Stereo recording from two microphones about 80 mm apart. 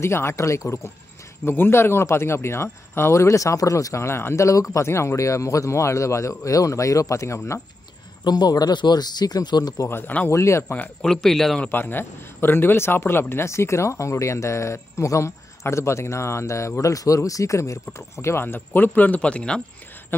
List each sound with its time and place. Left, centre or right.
0.0 s a man's voice: left
1.4 s a man's voice: left
8.2 s speech: left
9.8 s a man's voice: left
11.0 s speech: centre
11.7 s a man's voice: left